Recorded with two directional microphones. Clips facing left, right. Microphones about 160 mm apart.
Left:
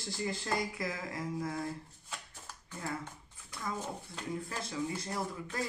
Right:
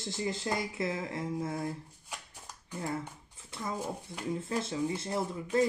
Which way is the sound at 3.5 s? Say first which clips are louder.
Right 2 dB; 25° right (ahead or behind).